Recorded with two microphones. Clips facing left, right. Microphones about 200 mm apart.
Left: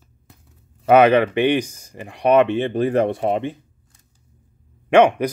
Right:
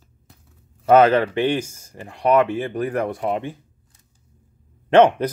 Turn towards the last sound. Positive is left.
turn(degrees=10)  # may be behind; listen again after turning